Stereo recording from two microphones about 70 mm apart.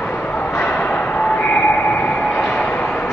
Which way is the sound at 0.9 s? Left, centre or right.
Left.